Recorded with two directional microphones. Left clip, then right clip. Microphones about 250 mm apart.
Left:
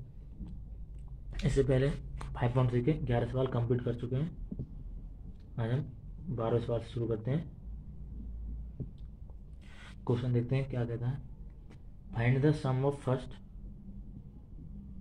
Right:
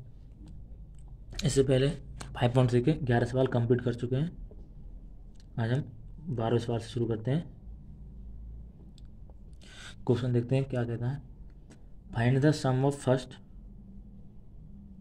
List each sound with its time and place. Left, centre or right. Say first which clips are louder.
1.4 s speech: right 4 dB; right
5.6 s speech: right 4 dB; right
9.8 s speech: right 5 dB; right
12.1 s speech: right 3 dB; right